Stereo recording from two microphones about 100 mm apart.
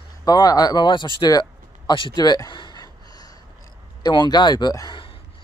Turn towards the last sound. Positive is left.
turn(degrees=45)  # may be behind; listen again after turning